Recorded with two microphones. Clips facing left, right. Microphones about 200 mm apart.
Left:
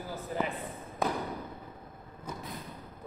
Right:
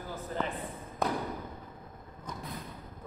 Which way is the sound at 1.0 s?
Centre (ahead or behind).